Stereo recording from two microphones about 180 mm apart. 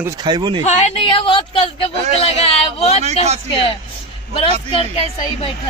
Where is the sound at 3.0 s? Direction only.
35° right (ahead or behind).